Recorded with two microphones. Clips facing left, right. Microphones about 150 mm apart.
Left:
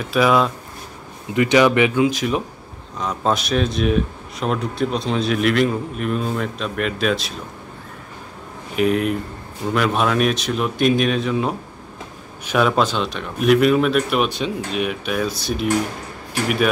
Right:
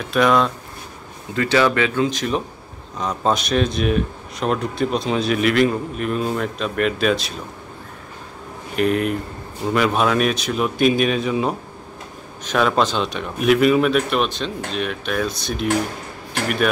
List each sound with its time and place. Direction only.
0.0 s speech: 5° left (ahead or behind)
1.3 s speech: 15° left (ahead or behind); by 7.3 s centre (ahead or behind)
8.7 s speech: centre (ahead or behind)